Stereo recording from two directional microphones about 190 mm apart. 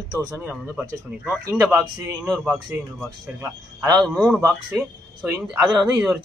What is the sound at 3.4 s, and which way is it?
Speech, 15° right (ahead or behind).